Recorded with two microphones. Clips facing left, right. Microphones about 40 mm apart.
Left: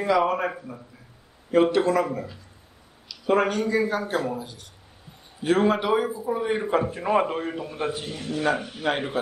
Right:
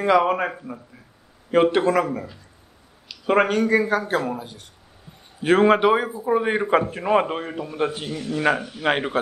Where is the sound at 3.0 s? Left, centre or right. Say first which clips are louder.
Right 3 dB; right.